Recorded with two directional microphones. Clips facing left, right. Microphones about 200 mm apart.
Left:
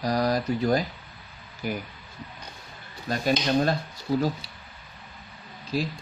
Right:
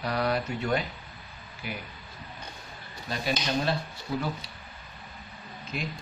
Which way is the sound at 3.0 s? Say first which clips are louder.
Left 6 dB; 45° left (ahead or behind).